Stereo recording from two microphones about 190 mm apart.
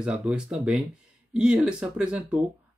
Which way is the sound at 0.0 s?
5° right (ahead or behind).